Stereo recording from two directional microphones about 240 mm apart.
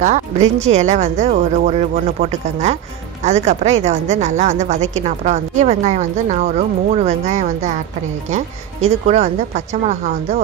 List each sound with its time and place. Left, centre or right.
0.0 s a woman's voice: right
8.8 s a woman's voice: right